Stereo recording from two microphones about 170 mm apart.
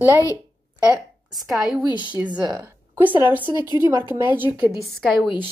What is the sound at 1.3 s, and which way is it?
Speech, centre (ahead or behind).